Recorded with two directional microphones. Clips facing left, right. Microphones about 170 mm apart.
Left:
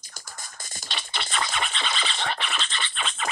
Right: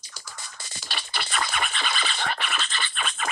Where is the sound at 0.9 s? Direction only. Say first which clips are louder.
Even; 25° left (ahead or behind).